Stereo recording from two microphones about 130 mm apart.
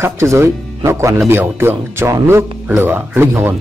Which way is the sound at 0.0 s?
20° right (ahead or behind).